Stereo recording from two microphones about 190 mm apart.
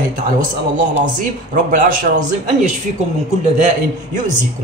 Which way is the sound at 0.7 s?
40° right (ahead or behind).